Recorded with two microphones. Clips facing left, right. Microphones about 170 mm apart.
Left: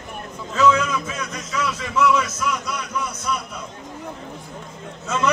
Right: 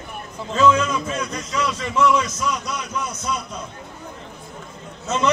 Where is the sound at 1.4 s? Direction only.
30° right (ahead or behind).